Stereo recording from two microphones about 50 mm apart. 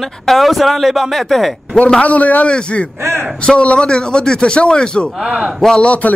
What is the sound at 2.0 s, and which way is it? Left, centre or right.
A man's voice, left.